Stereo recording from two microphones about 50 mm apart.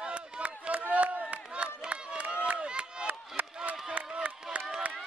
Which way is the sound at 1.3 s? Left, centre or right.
Right.